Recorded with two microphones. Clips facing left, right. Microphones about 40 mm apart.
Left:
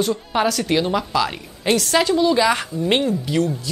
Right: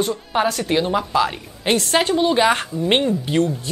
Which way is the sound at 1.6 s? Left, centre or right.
Right.